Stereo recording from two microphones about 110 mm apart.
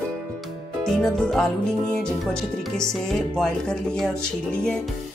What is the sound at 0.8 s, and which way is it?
Speech, 5° left (ahead or behind).